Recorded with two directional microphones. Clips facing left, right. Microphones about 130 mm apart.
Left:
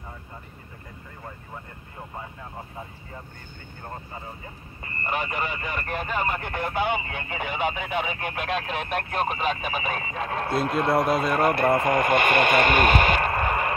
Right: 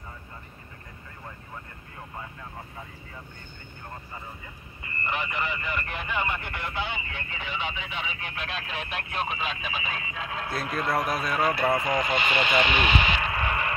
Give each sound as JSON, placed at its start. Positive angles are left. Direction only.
{"t": 4.8, "sound": "speech", "side_deg": 40}